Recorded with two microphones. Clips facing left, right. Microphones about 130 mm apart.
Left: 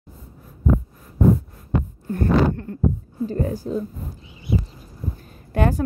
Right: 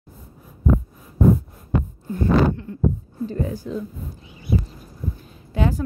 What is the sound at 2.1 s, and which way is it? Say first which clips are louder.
Speech: even; 50° left (ahead or behind).